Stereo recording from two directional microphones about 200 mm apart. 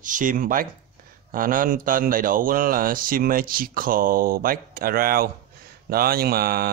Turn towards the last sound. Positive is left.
turn(degrees=-50)  # may be behind; listen again after turning